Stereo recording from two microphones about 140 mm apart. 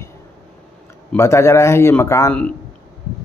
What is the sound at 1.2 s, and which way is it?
A man's voice, 20° left (ahead or behind).